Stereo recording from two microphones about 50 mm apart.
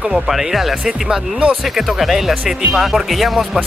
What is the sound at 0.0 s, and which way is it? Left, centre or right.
Speech, centre.